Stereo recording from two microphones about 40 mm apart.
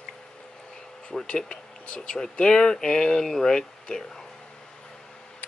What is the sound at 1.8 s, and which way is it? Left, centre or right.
Speech, left.